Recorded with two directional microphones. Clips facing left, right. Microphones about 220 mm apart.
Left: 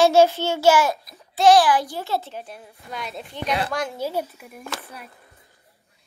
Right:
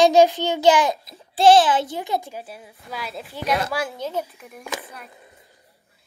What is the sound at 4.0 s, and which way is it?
Speech, 10° left (ahead or behind).